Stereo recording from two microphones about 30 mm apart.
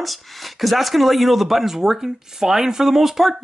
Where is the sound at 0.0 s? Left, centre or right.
Centre.